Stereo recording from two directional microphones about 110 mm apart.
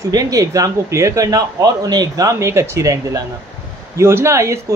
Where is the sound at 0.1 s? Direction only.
35° right (ahead or behind).